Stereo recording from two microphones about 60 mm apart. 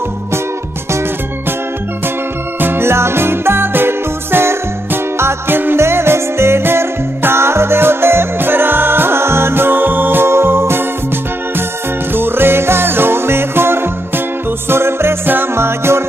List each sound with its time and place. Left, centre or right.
2.6 s music: right
12.1 s music: right